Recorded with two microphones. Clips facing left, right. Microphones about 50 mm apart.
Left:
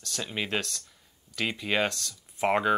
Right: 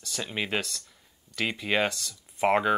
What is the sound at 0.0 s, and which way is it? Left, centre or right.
Speech, centre.